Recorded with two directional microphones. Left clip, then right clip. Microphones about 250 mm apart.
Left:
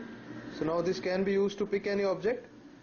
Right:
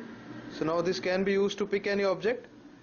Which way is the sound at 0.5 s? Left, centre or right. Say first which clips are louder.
Right 2 dB; centre.